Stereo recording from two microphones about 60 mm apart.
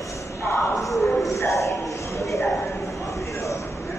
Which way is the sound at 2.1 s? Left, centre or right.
Left.